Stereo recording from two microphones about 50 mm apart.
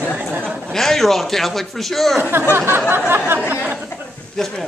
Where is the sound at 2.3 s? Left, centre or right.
Right.